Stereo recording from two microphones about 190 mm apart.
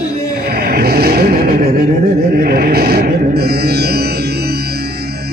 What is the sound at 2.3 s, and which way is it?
Music, 50° right (ahead or behind).